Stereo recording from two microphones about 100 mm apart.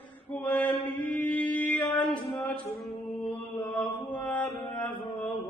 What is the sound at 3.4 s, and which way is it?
Mantra, 20° left (ahead or behind).